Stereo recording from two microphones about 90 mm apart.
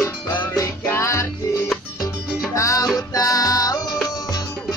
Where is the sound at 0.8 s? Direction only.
30° left (ahead or behind).